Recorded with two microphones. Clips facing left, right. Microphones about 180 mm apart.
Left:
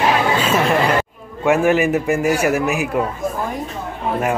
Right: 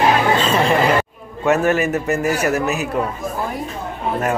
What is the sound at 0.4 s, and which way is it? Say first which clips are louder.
Chatter: even; 5° left (ahead or behind).